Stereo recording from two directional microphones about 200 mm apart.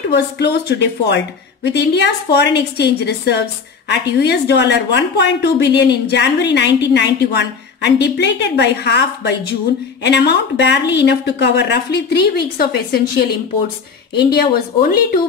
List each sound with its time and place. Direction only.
0.4 s a woman's voice: 55° left (ahead or behind)